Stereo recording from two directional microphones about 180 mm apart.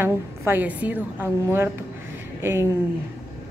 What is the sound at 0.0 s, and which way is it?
A woman's voice, 10° right (ahead or behind).